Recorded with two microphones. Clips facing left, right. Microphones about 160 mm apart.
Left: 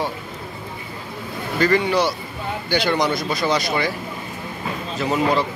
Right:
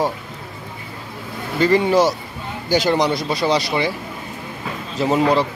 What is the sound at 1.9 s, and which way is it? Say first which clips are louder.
Speech: right 4 dB; 40° right (ahead or behind).